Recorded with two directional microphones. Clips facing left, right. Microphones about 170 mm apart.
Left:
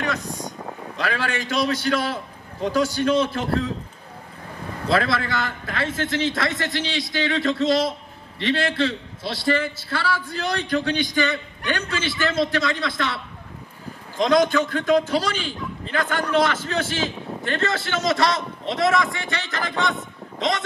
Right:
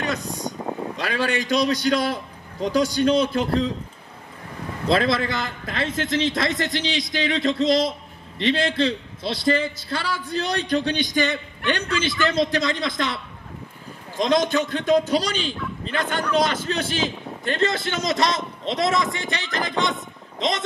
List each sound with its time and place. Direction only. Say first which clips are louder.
0.9 s a man's voice: even; 20° right (ahead or behind)
4.9 s a man's voice: right 1 dB; 20° right (ahead or behind)